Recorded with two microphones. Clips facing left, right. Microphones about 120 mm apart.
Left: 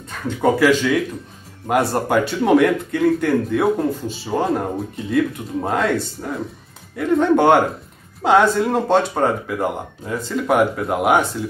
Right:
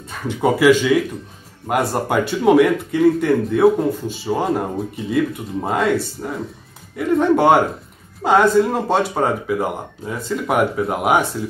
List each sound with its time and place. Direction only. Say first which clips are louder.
0.4 s speech: right 2 dB; 5° right (ahead or behind)